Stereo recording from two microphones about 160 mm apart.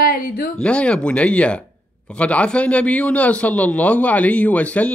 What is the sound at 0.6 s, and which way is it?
A man's voice, 5° left (ahead or behind).